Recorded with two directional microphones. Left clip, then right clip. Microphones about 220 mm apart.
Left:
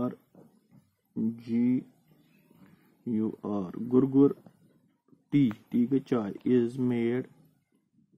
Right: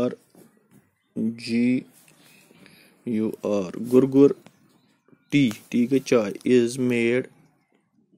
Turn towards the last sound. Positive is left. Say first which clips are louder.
# right 7 dB
turn(degrees=0)  # may be behind; listen again after turning